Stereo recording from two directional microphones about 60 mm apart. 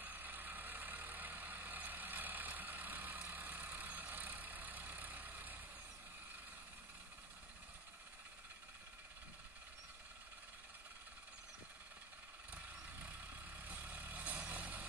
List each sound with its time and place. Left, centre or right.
0.0 s vehicle: right
13.7 s vehicle: right